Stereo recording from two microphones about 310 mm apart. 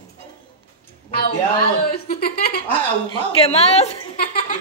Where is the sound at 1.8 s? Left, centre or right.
Left.